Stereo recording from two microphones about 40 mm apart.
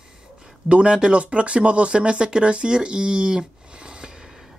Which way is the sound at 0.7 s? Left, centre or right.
Right.